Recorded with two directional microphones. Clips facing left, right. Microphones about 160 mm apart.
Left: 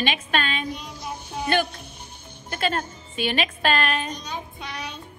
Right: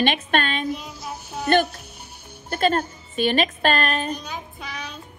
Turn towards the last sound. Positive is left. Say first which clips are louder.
# even
turn(degrees=0)  # may be behind; listen again after turning